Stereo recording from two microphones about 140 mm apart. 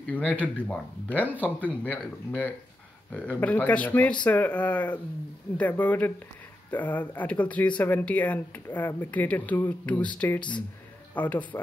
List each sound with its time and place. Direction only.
0.0 s speech: 10° left (ahead or behind)